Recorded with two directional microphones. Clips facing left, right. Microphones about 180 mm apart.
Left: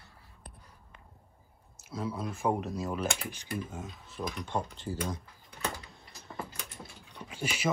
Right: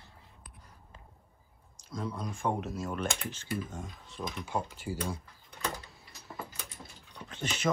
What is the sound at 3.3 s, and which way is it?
Speech, 10° left (ahead or behind).